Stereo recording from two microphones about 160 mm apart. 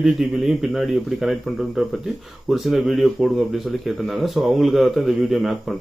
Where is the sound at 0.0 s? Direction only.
Centre (ahead or behind).